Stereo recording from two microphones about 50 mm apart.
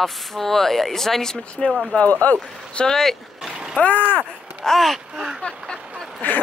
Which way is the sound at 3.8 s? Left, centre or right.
Left.